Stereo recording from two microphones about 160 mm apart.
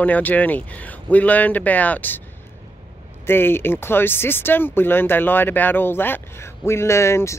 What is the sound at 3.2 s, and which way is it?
Speech, 15° left (ahead or behind).